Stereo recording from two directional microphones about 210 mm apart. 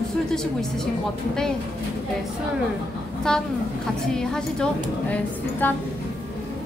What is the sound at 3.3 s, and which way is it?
A woman's voice, 5° left (ahead or behind).